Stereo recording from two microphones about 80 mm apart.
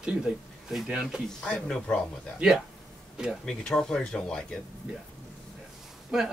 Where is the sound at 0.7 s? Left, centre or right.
Centre.